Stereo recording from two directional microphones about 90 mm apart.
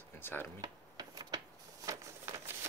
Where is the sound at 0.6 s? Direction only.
45° right (ahead or behind).